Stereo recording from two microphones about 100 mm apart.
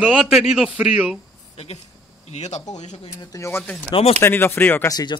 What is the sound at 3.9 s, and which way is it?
Speech, 75° left (ahead or behind).